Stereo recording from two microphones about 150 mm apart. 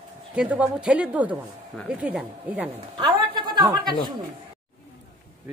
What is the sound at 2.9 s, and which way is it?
Speech, 35° right (ahead or behind).